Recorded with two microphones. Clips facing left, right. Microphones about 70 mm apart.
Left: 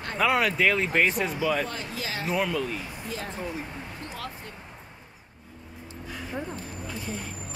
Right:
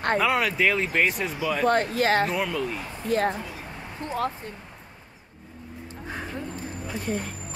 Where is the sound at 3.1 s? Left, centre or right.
Right.